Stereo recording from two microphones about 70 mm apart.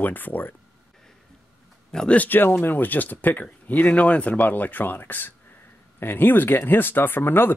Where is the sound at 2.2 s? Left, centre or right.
Left.